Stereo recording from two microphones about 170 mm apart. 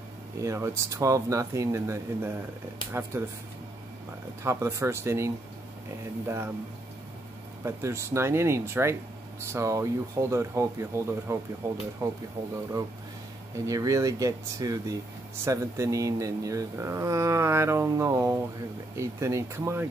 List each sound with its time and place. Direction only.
0.4 s speech: 20° right (ahead or behind)
4.4 s speech: 15° right (ahead or behind)
7.6 s speech: 15° right (ahead or behind)
13.7 s speech: 20° right (ahead or behind)